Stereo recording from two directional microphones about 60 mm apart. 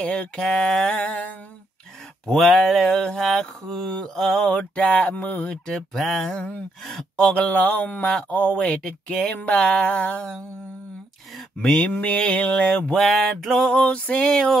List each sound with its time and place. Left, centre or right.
0.0 s speech: left
0.4 s mantra: centre
2.2 s mantra: centre
4.5 s speech: left
5.7 s mantra: centre
7.2 s speech: left
11.8 s speech: left
13.0 s mantra: centre
13.7 s speech: centre
14.3 s mantra: centre